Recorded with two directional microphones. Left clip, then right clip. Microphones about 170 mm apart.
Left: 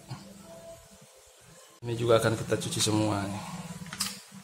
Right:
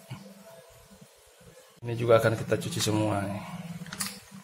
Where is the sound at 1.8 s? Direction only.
Centre (ahead or behind).